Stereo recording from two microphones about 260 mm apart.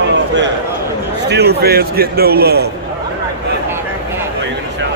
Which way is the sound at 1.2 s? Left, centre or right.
Right.